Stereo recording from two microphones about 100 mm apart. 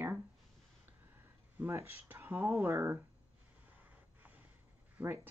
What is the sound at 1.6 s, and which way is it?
Speech, 20° right (ahead or behind).